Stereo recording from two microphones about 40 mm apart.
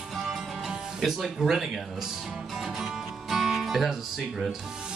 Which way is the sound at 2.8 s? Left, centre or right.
Centre.